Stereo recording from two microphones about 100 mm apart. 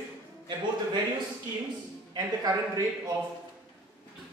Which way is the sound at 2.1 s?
40° right (ahead or behind).